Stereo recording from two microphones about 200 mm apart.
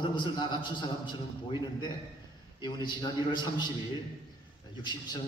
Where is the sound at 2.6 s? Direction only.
20° left (ahead or behind).